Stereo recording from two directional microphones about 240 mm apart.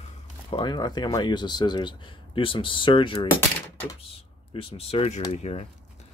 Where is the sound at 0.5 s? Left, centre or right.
Centre.